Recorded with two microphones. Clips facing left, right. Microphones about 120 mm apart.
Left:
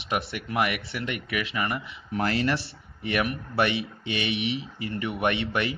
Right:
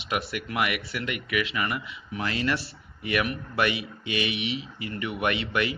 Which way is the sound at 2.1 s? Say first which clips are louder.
Left 3 dB; 45° left (ahead or behind).